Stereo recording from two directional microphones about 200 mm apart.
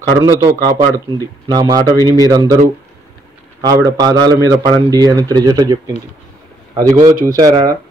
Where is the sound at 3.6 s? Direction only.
20° right (ahead or behind).